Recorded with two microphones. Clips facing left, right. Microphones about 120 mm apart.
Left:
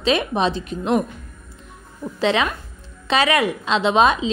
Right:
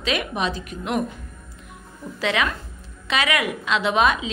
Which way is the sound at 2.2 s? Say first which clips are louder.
Left 4 dB; 30° left (ahead or behind).